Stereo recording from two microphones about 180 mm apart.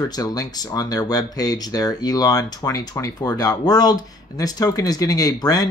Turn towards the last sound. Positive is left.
turn(degrees=20)  # may be behind; listen again after turning